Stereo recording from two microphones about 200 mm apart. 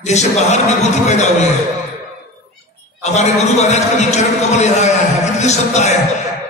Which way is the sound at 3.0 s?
35° left (ahead or behind).